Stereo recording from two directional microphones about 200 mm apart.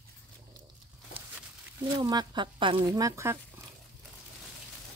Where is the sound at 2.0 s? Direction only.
20° right (ahead or behind).